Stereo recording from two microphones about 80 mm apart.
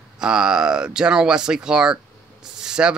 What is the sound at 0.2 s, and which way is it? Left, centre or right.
Speech, centre.